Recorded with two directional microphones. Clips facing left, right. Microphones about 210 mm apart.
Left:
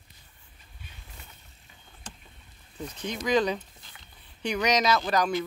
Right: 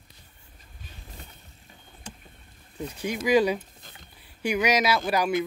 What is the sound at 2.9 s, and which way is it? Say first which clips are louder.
Speech: right 4 dB; 10° right (ahead or behind).